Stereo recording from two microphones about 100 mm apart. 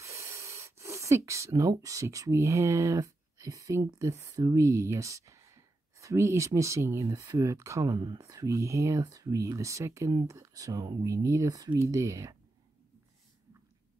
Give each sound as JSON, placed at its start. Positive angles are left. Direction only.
{"t": 0.0, "sound": "a sound", "side_deg": -30}
{"t": 1.6, "sound": "speech", "side_deg": -35}
{"t": 8.2, "sound": "speech", "side_deg": -35}